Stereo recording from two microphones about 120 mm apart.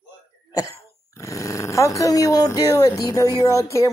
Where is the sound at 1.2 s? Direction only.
25° left (ahead or behind).